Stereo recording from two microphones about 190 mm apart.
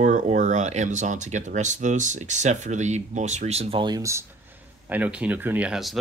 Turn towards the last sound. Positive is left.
turn(degrees=-5)  # may be behind; listen again after turning